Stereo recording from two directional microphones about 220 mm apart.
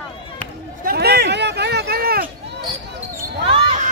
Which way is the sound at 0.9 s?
45° right (ahead or behind).